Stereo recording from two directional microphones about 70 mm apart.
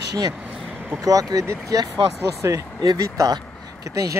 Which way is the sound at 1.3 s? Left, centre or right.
Right.